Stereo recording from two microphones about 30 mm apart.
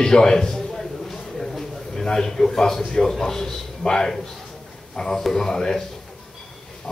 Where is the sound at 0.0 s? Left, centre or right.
Left.